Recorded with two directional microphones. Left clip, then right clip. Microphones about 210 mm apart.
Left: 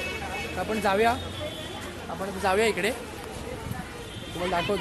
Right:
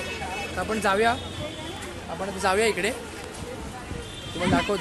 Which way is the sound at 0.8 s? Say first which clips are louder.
Right 1 dB; centre (ahead or behind).